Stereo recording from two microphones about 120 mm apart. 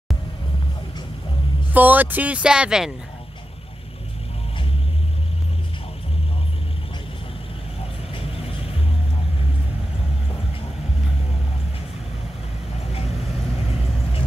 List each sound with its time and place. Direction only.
1.7 s speech: 15° right (ahead or behind)